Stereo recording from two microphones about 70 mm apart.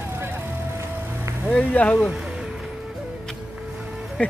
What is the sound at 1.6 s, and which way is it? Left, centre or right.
Speech, centre.